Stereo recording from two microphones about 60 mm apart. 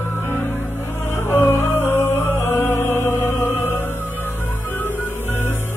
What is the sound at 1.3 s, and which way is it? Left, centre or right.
Music, left.